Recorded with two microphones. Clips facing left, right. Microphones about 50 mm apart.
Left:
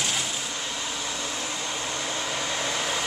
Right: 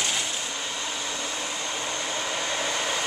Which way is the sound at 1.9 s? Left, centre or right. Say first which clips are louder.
Right 1 dB; centre.